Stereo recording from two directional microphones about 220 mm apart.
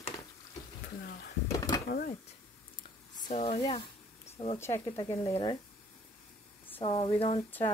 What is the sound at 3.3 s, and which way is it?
Speech, 25° left (ahead or behind).